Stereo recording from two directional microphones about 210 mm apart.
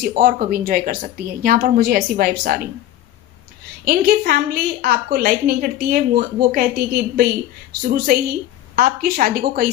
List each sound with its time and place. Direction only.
0.0 s a woman's voice: 45° right (ahead or behind)
3.8 s a woman's voice: 45° right (ahead or behind)